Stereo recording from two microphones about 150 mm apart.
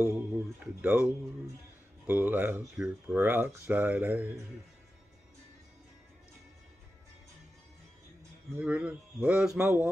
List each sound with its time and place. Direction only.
0.0 s speech: 15° right (ahead or behind)
8.5 s speech: 10° right (ahead or behind)